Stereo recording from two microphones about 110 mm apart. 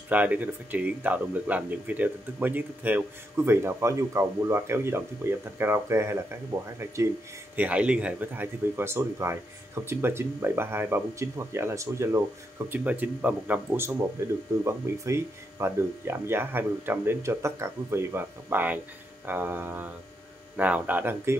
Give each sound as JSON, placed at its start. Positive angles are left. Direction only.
{"t": 0.1, "sound": "speech", "side_deg": -15}
{"t": 7.5, "sound": "speech", "side_deg": -10}